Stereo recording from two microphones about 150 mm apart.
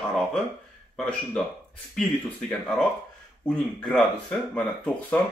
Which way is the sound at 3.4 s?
Centre (ahead or behind).